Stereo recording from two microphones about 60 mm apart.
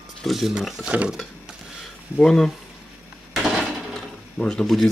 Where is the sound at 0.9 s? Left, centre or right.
Right.